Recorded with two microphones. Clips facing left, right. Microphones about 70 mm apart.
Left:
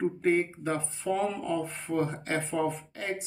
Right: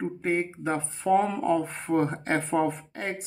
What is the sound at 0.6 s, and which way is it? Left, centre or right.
Speech, right.